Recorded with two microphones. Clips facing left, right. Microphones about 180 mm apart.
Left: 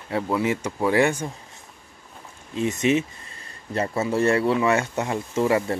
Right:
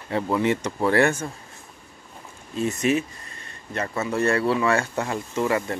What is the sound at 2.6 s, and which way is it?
Speech, 20° left (ahead or behind).